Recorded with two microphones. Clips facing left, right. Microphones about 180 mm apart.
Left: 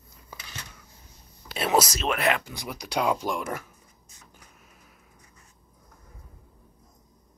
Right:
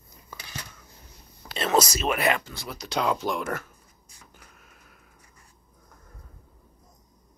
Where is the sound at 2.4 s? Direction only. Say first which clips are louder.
Left 1 dB; 15° left (ahead or behind).